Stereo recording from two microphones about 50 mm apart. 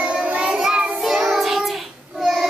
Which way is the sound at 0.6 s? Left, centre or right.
Centre.